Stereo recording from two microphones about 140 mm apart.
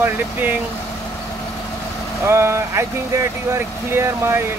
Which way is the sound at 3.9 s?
20° right (ahead or behind).